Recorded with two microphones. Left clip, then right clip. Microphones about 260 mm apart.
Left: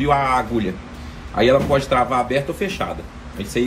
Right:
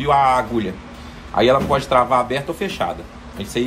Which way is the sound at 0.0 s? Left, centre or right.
Right.